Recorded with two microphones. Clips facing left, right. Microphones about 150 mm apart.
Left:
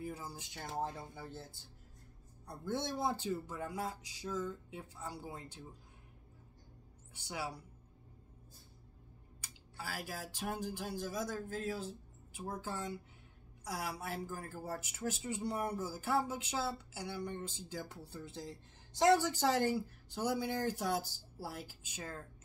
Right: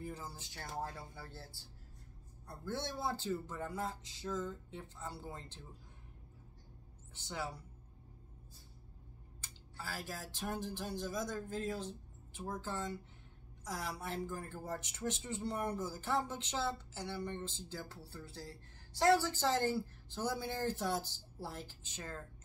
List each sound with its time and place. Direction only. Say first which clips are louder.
0.0 s speech: left 2 dB; 10° left (ahead or behind)
7.2 s speech: even; 10° left (ahead or behind)
9.8 s speech: left 1 dB; 10° left (ahead or behind)